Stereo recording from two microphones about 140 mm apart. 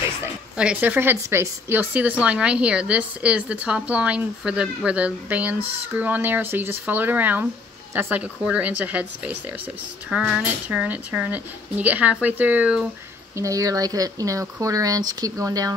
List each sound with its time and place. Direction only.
0.6 s speech: 10° right (ahead or behind)
13.4 s speech: 25° right (ahead or behind)